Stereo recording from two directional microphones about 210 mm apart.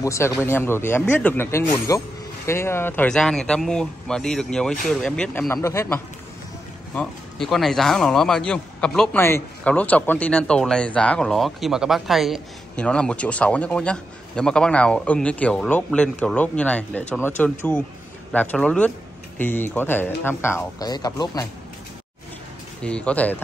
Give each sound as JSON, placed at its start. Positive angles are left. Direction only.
{"t": 0.0, "sound": "speech", "side_deg": 15}
{"t": 7.0, "sound": "speech", "side_deg": 0}
{"t": 22.8, "sound": "speech", "side_deg": 5}